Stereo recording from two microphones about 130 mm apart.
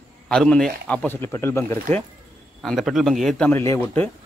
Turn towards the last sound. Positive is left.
turn(degrees=10)  # may be behind; listen again after turning